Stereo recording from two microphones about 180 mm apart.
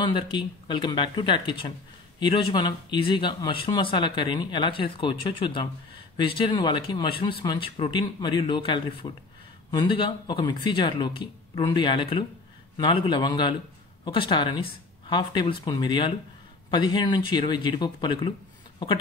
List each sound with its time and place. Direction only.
0.0 s speech: 25° left (ahead or behind)